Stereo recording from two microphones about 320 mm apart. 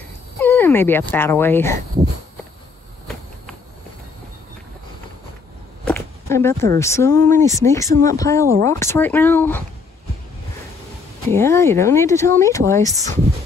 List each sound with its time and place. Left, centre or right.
0.4 s speech: centre
5.9 s a sound: centre
6.8 s speech: centre
11.2 s speech: centre